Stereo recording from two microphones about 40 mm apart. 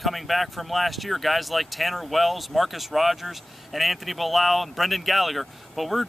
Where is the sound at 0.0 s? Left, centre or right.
Centre.